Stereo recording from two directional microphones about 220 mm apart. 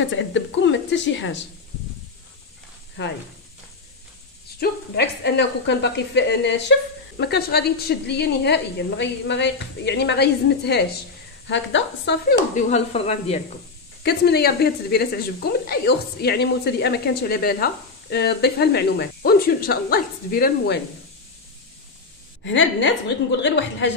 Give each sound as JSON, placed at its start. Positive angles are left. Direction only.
{"t": 0.0, "sound": "a woman's voice", "side_deg": 55}
{"t": 3.0, "sound": "a woman's voice", "side_deg": 55}
{"t": 4.6, "sound": "a woman's voice", "side_deg": 45}
{"t": 12.5, "sound": "speech", "side_deg": 30}
{"t": 14.0, "sound": "a woman's voice", "side_deg": 45}
{"t": 22.4, "sound": "a woman's voice", "side_deg": 55}